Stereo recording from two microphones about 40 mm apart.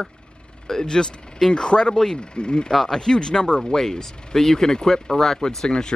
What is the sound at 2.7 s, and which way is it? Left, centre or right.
Speech, centre.